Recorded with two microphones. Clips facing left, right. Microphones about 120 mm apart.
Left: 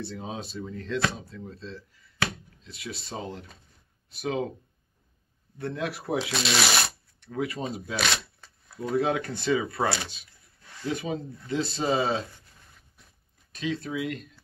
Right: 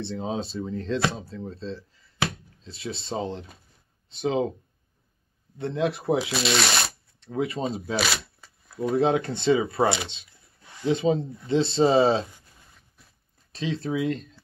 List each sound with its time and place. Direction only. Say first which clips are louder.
0.0 s speech: right 6 dB; 30° right (ahead or behind)
5.6 s speech: right 5 dB; 20° right (ahead or behind)
6.3 s speech: right 2 dB; centre (ahead or behind)
7.2 s speech: right 3 dB; 25° right (ahead or behind)
8.0 s shuffling cards: right 2 dB; 5° right (ahead or behind)
8.9 s speech: right 3 dB; 25° right (ahead or behind)
13.5 s speech: right 3 dB; 30° right (ahead or behind)